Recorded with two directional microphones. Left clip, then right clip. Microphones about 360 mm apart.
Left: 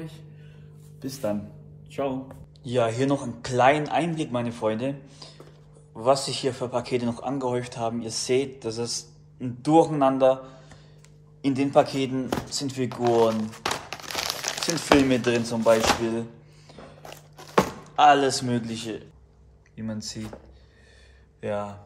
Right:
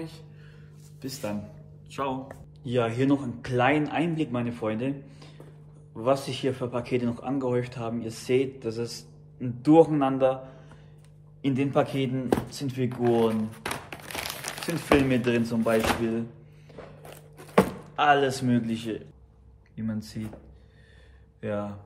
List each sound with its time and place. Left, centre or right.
1.9 s speech: centre
2.6 s speech: centre
17.0 s a sound: centre
19.7 s speech: centre
21.4 s speech: centre